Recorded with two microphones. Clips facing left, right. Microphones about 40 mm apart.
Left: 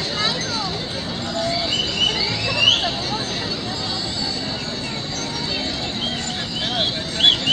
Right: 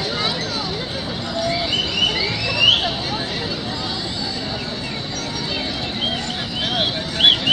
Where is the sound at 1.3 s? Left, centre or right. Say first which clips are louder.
Right 1 dB; centre.